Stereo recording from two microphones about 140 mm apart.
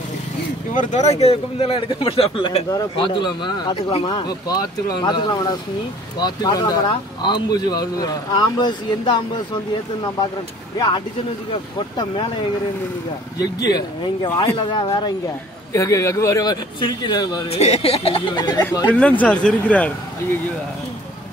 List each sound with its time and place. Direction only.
0.7 s speech: 55° left (ahead or behind)
2.7 s a man's voice: 35° left (ahead or behind)
3.7 s speech: 45° left (ahead or behind)
4.1 s a man's voice: 30° left (ahead or behind)
13.7 s a man's voice: 25° left (ahead or behind)
15.7 s a man's voice: 20° left (ahead or behind)
17.5 s speech: 50° left (ahead or behind); by 18.6 s 30° left (ahead or behind)
18.9 s speech: 10° left (ahead or behind)